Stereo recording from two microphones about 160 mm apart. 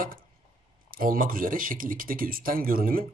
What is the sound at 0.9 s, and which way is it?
A man's voice, 60° right (ahead or behind).